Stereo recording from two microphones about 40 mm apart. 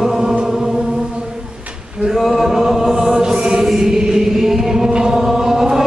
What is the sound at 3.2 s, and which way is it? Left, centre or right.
Chant, right.